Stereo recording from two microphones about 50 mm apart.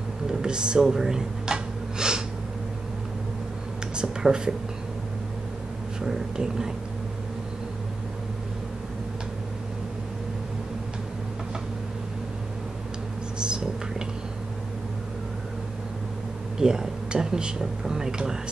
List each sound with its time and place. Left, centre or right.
0.3 s gasp: centre
3.9 s speech: centre
5.9 s speech: centre
13.4 s whispering: centre
16.5 s speech: centre